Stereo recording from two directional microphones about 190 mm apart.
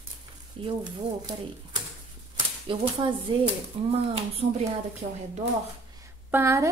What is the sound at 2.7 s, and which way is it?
A woman's voice, 25° right (ahead or behind).